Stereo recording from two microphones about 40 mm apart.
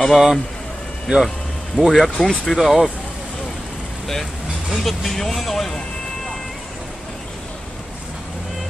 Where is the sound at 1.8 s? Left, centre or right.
Right.